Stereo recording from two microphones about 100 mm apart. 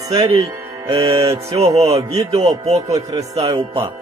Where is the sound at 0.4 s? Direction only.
35° right (ahead or behind).